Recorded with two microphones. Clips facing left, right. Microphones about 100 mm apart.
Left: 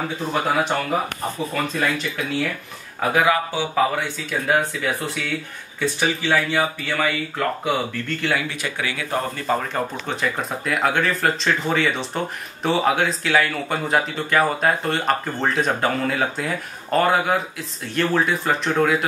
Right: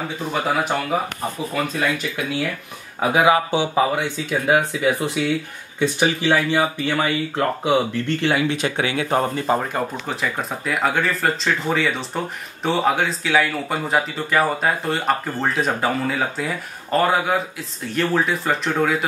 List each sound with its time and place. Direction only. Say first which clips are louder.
0.3 s speech: even; centre (ahead or behind)
3.0 s speech: right 2 dB; 15° right (ahead or behind)
9.5 s speech: right 1 dB; 15° right (ahead or behind)
10.0 s speech: even; 5° right (ahead or behind)